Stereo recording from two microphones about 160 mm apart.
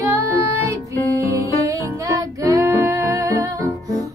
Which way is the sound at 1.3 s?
20° right (ahead or behind).